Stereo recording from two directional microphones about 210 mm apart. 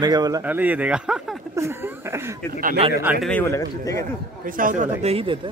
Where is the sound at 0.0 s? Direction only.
20° right (ahead or behind).